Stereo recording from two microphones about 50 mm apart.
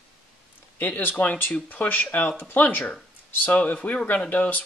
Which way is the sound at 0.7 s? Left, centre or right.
Left.